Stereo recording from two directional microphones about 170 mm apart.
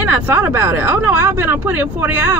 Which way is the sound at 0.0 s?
10° right (ahead or behind).